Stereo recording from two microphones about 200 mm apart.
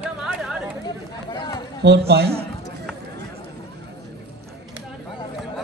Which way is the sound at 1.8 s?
55° right (ahead or behind).